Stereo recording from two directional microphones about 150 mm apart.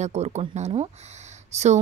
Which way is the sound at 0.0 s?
50° right (ahead or behind).